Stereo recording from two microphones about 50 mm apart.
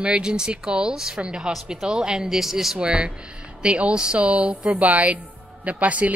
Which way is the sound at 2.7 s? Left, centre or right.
Right.